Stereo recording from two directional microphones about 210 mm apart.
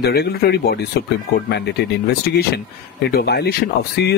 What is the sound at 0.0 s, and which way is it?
Speech, 50° left (ahead or behind).